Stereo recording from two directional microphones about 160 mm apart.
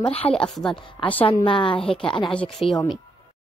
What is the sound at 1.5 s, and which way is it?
Speech, 30° left (ahead or behind).